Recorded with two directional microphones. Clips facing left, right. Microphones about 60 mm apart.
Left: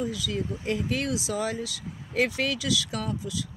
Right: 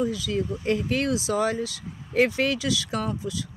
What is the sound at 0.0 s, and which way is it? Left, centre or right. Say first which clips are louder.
Speech: right 4 dB; right.